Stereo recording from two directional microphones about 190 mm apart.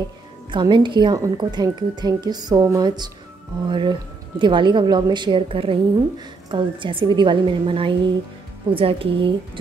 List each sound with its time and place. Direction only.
0.5 s a woman's voice: 25° right (ahead or behind)